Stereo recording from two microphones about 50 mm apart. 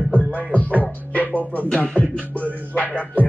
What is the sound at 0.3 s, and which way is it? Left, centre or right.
Music, left.